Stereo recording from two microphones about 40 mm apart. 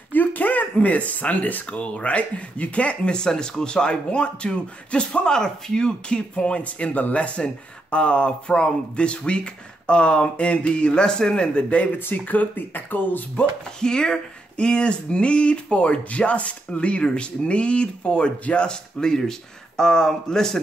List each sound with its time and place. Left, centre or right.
0.1 s speech: left
12.0 s speech: left
13.7 s a man's voice: centre